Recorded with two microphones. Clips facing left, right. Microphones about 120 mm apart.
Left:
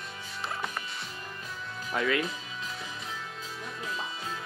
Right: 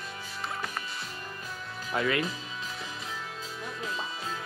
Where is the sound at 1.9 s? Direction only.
5° right (ahead or behind).